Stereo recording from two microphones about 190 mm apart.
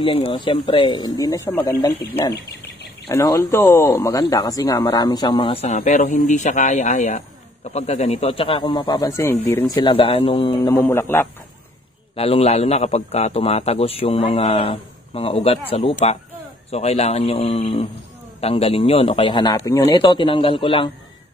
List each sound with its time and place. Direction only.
0.0 s speech: 30° left (ahead or behind); by 1.9 s 10° left (ahead or behind)
3.1 s speech: 15° left (ahead or behind); by 5.8 s 30° left (ahead or behind)
5.8 s a man's voice: 40° left (ahead or behind); by 10.8 s 25° left (ahead or behind)
10.8 s speech: 15° left (ahead or behind)
12.2 s a man's voice: 30° left (ahead or behind)